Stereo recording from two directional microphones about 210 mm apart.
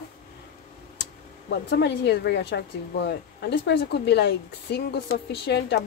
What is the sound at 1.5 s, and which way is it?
A woman's voice, 55° left (ahead or behind).